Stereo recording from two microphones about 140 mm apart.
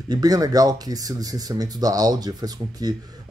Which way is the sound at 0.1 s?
25° right (ahead or behind).